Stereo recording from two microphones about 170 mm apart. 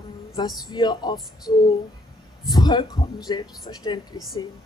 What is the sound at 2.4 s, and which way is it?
Speech, 25° left (ahead or behind).